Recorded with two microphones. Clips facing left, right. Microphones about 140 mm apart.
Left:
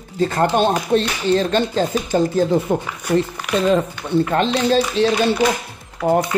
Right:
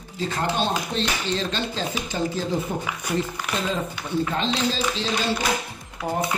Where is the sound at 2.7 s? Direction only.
70° left (ahead or behind).